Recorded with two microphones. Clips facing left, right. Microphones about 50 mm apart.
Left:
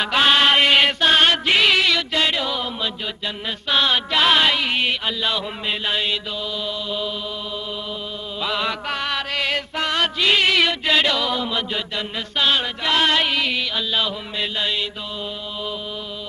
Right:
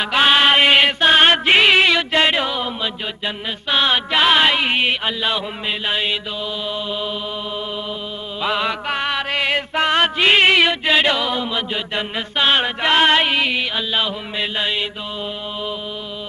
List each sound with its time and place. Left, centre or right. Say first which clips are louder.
0.0 s mantra: right 2 dB; centre
1.0 s music: right 3 dB; right
2.5 s mantra: right 2 dB; centre
3.6 s chant: right 2 dB; centre
4.6 s chant: right 3 dB; right
8.4 s chant: right 3 dB; centre; by 10.6 s right
10.6 s chant: right 3 dB; centre
11.9 s chant: right 3 dB; right